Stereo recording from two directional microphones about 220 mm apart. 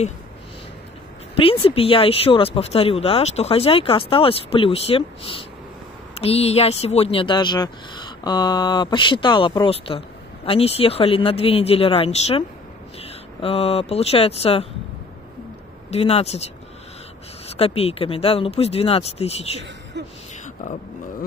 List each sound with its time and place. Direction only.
1.3 s speech: 25° left (ahead or behind)
15.9 s speech: 25° left (ahead or behind)
17.6 s speech: 25° left (ahead or behind)